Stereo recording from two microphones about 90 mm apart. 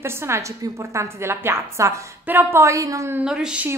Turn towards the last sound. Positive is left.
turn(degrees=-10)  # may be behind; listen again after turning